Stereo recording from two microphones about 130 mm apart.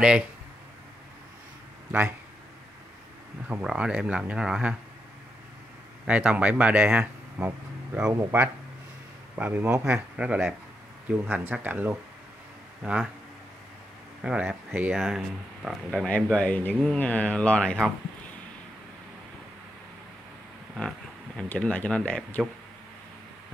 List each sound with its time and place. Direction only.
1.9 s speech: 15° right (ahead or behind)
3.6 s speech: 5° right (ahead or behind)
6.0 s speech: 10° right (ahead or behind)
14.2 s speech: 10° right (ahead or behind)
21.5 s speech: 10° left (ahead or behind)